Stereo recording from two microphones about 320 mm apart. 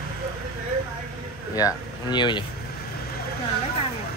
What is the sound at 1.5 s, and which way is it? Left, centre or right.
Speech, centre.